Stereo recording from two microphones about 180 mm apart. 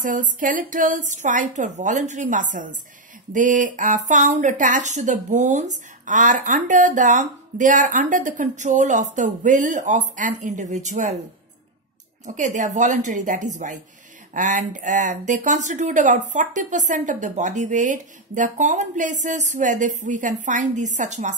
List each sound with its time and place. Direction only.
0.0 s speech: 45° right (ahead or behind)
12.3 s speech: 40° right (ahead or behind)